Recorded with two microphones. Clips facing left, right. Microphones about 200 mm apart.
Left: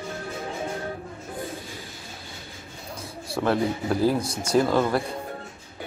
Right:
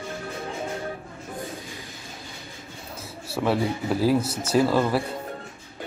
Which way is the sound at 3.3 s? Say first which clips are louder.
Even; 5° right (ahead or behind).